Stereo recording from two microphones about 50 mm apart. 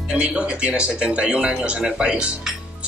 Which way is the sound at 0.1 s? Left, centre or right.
Right.